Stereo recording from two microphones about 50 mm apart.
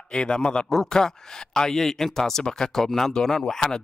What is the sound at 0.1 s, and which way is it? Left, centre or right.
A man's voice, centre.